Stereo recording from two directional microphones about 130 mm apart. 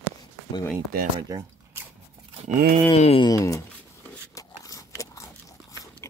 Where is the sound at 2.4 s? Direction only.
70° right (ahead or behind).